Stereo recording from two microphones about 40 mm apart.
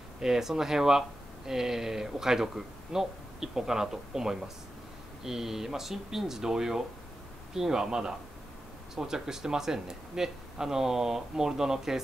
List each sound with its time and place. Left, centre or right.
0.2 s speech: centre